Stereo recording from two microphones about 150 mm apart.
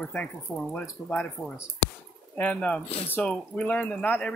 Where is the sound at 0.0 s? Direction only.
10° left (ahead or behind).